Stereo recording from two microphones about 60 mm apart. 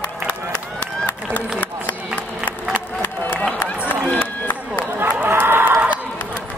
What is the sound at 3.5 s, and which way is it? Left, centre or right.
Run, left.